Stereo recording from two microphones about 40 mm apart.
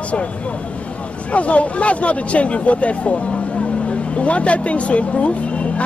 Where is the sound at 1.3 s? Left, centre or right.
Left.